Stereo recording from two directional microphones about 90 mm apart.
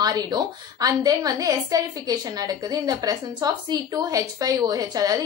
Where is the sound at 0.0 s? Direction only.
50° right (ahead or behind).